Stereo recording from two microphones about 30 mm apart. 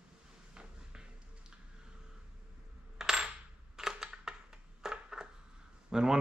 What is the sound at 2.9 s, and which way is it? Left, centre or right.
Coin, centre.